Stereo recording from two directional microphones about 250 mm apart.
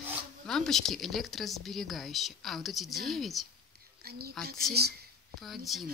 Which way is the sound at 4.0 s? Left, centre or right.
Right.